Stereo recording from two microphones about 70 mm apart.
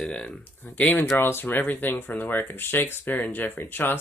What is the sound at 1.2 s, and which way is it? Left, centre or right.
Speech, left.